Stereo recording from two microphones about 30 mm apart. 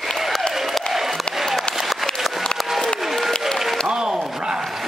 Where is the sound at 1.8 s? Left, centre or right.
Centre.